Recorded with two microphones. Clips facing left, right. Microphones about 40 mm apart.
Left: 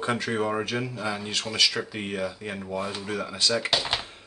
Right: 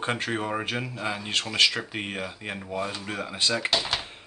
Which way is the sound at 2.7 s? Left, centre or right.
Centre.